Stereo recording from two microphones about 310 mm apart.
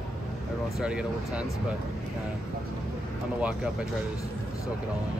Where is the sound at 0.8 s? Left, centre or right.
Centre.